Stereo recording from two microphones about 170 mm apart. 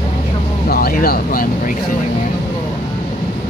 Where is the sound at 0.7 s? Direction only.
60° left (ahead or behind).